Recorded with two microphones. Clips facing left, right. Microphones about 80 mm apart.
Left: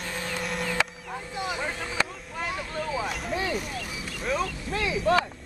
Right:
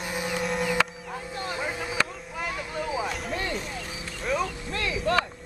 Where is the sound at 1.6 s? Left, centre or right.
Centre.